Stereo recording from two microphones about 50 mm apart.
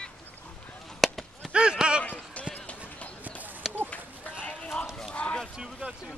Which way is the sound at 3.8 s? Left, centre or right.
Left.